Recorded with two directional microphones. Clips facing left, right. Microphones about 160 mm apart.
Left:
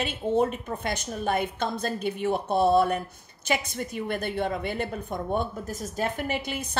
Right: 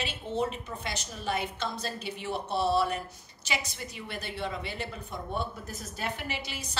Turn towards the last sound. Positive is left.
turn(degrees=50)  # may be behind; listen again after turning